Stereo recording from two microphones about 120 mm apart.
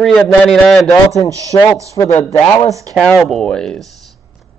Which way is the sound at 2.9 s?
Centre (ahead or behind).